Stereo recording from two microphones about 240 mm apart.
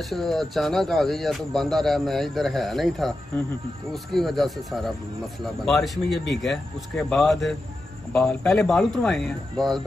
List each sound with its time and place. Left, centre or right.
0.0 s speech: centre
6.0 s speech: left
6.4 s speech: centre